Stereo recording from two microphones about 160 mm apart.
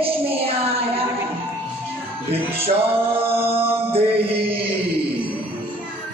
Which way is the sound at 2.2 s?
40° right (ahead or behind).